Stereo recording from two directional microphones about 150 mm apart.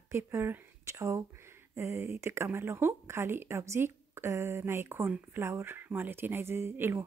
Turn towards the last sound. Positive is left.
turn(degrees=-15)  # may be behind; listen again after turning